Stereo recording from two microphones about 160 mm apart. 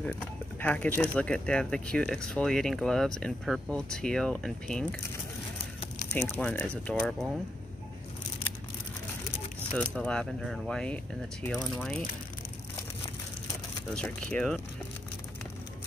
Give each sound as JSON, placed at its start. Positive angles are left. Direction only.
{"t": 0.0, "sound": "speech", "side_deg": 10}
{"t": 6.1, "sound": "speech", "side_deg": 15}
{"t": 9.8, "sound": "speech", "side_deg": 5}
{"t": 13.9, "sound": "speech", "side_deg": 5}